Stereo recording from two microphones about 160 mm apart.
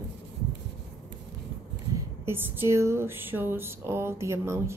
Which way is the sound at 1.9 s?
15° right (ahead or behind).